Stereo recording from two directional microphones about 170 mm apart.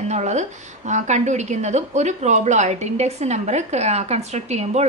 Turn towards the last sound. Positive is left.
turn(degrees=-40)  # may be behind; listen again after turning